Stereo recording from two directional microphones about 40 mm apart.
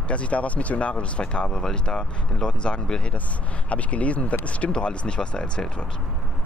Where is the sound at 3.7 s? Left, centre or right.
Left.